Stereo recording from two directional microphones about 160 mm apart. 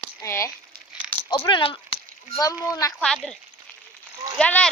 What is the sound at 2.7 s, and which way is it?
Speech, 20° left (ahead or behind).